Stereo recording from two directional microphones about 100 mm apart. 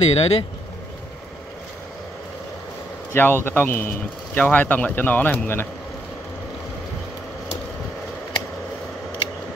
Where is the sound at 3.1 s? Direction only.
20° left (ahead or behind).